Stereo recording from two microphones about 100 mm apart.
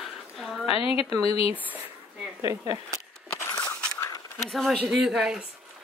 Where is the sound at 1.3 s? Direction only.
70° left (ahead or behind).